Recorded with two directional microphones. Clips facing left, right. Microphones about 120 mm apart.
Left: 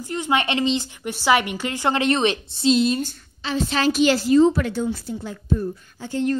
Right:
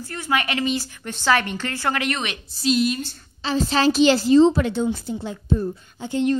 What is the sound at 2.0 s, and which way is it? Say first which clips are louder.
Speech: left 6 dB; 30° left (ahead or behind).